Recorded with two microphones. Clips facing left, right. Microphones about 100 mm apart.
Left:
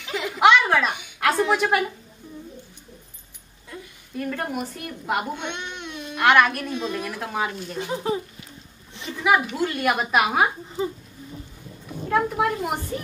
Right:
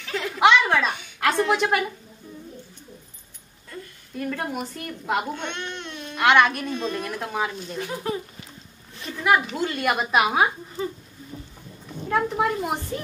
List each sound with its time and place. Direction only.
0.0 s a sound: 15° left (ahead or behind)
3.7 s a woman's voice: centre (ahead or behind)
7.7 s speech: 20° left (ahead or behind)
9.1 s a woman's voice: 5° left (ahead or behind)
11.9 s a woman's voice: 5° left (ahead or behind)